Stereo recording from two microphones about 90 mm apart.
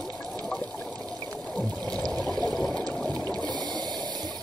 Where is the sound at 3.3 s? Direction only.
50° right (ahead or behind).